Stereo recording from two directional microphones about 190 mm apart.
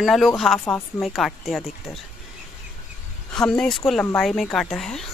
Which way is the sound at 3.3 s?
5° left (ahead or behind).